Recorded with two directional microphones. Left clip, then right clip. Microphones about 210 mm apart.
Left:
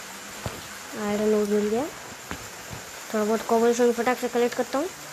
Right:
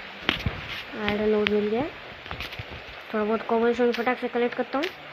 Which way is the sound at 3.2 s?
5° left (ahead or behind).